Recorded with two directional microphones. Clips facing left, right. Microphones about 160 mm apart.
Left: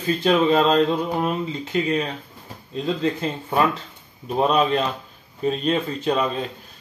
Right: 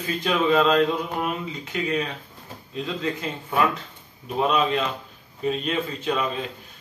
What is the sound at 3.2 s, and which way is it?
Speech, 35° left (ahead or behind).